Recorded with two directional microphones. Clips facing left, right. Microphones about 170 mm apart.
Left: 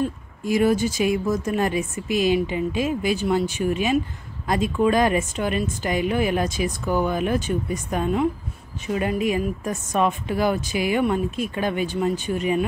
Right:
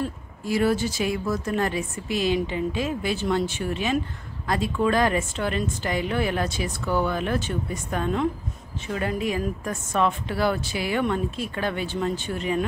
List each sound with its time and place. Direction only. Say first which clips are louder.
0.0 s speech: left 4 dB; 15° left (ahead or behind)